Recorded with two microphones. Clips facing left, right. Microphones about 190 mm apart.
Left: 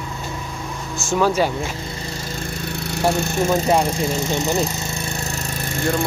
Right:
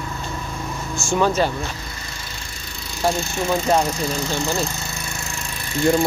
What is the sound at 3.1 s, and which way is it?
Speech, 55° left (ahead or behind).